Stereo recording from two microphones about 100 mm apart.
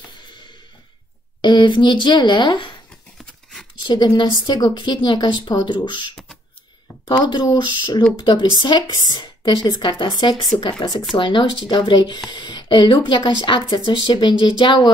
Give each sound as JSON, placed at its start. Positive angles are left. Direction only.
{"t": 1.4, "sound": "speech", "side_deg": 50}
{"t": 3.2, "sound": "scissors", "side_deg": 5}
{"t": 3.8, "sound": "speech", "side_deg": 45}
{"t": 7.2, "sound": "speech", "side_deg": 45}